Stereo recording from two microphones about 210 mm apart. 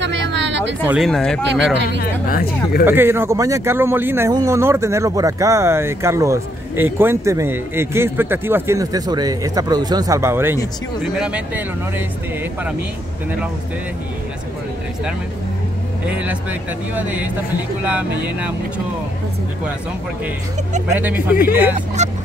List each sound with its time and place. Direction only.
0.0 s a sound: 60° right (ahead or behind)
0.8 s speech: centre (ahead or behind)
1.5 s speech: 55° right (ahead or behind)
2.0 s speech: 45° left (ahead or behind)
2.8 s speech: 10° right (ahead or behind)
16.1 s speech: 5° right (ahead or behind)
21.0 s speech: 10° right (ahead or behind)
21.7 s speech: 35° right (ahead or behind)